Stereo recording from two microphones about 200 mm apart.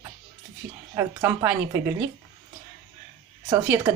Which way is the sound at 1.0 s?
10° right (ahead or behind).